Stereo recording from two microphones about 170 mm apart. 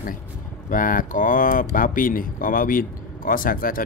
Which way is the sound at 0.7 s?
55° left (ahead or behind).